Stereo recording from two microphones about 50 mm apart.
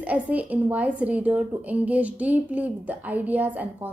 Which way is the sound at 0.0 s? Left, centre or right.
Right.